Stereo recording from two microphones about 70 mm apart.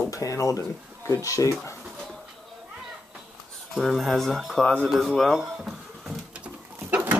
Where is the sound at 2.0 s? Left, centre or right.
Centre.